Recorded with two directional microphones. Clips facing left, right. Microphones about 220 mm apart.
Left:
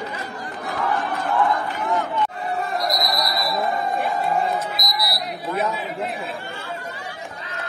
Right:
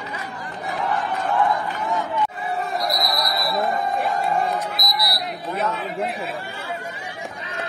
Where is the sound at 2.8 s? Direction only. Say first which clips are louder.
Even; centre (ahead or behind).